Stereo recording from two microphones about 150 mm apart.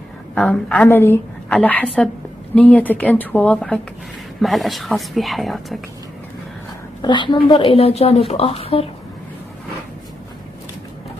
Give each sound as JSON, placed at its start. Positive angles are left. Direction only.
{"t": 0.3, "sound": "a woman's voice", "side_deg": 10}
{"t": 7.0, "sound": "a woman's voice", "side_deg": 30}